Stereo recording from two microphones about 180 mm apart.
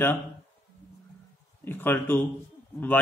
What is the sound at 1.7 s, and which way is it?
Speech, 10° left (ahead or behind).